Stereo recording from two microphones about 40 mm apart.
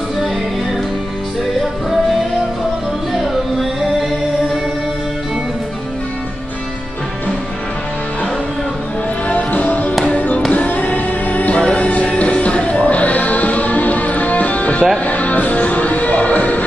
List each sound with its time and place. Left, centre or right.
9.3 s music: left